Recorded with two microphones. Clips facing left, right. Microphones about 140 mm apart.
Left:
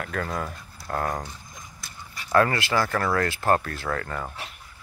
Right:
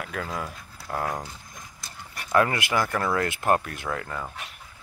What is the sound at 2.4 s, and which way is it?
Speech, 15° right (ahead or behind).